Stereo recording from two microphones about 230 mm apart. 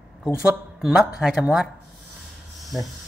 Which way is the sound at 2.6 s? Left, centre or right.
Centre.